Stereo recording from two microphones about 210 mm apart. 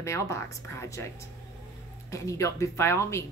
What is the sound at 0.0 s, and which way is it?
Speech, 15° left (ahead or behind).